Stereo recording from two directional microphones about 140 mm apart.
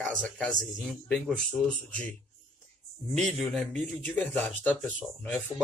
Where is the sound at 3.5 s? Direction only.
10° left (ahead or behind).